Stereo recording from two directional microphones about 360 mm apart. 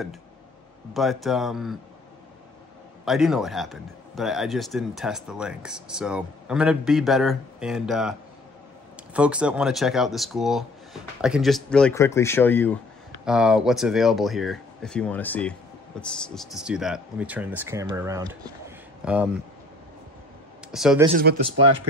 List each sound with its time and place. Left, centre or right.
0.9 s a man's voice: centre
3.1 s a man's voice: centre
20.7 s a man's voice: centre
21.3 s speech: right